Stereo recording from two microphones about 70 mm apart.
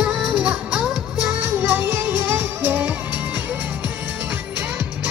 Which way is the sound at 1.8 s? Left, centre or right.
Right.